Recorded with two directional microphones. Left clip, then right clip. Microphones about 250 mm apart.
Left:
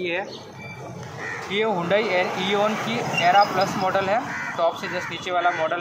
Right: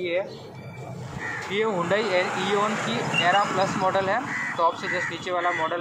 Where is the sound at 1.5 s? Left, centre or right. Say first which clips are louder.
Left 3 dB; left.